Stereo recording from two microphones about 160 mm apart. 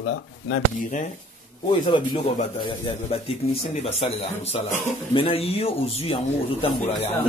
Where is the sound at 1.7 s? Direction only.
35° left (ahead or behind).